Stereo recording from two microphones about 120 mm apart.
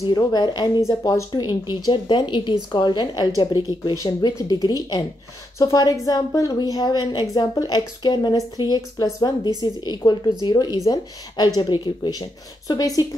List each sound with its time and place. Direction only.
0.0 s speech: 30° left (ahead or behind)
1.3 s speech: 35° left (ahead or behind)